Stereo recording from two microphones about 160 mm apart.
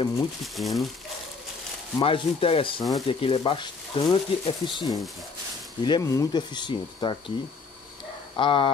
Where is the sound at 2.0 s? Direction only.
35° left (ahead or behind).